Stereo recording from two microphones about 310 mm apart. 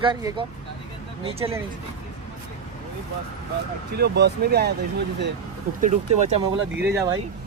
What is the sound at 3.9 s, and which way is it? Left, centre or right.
Speech, right.